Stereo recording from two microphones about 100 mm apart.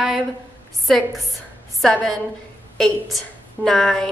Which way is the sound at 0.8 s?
Centre (ahead or behind).